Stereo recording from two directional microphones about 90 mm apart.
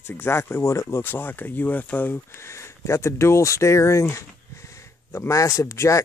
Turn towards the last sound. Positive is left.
turn(degrees=30)  # may be behind; listen again after turning